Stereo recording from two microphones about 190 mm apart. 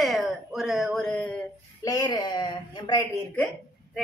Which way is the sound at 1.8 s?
20° left (ahead or behind).